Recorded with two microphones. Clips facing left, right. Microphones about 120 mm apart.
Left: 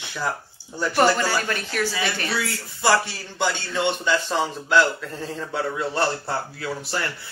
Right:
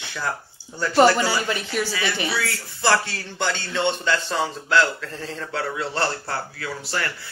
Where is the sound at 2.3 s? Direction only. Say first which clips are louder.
Even; 15° left (ahead or behind).